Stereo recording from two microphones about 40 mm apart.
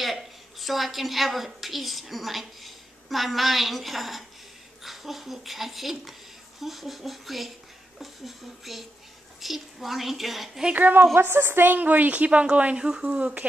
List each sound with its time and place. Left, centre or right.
0.0 s a woman's voice: centre
10.7 s a woman's voice: right
11.1 s a woman's voice: right
11.7 s a woman's voice: right
12.1 s speech: right
12.8 s speech: centre
13.2 s speech: right